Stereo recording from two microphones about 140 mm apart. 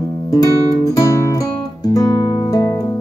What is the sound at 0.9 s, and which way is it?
Music, 25° left (ahead or behind).